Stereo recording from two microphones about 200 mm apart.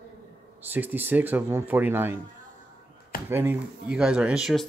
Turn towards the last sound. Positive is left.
turn(degrees=0)  # may be behind; listen again after turning